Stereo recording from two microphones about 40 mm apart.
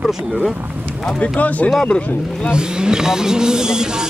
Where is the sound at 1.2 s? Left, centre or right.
Left.